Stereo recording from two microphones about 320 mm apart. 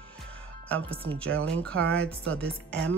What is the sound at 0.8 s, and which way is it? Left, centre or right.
Speech, centre.